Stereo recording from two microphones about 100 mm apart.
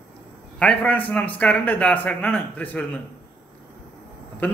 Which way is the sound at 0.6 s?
15° left (ahead or behind).